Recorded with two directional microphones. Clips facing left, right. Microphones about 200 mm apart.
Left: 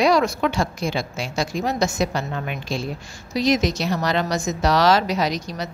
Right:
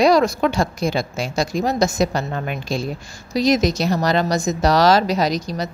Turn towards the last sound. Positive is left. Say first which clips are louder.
# right 3 dB
turn(degrees=-40)  # may be behind; listen again after turning